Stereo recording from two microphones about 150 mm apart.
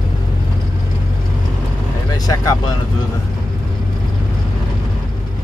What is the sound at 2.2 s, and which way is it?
Speech, 25° left (ahead or behind).